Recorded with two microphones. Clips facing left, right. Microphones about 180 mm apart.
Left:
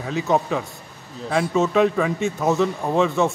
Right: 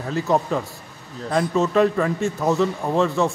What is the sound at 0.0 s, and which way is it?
A man's voice, centre (ahead or behind).